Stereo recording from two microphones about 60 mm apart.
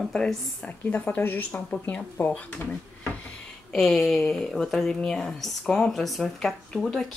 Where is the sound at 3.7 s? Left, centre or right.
Centre.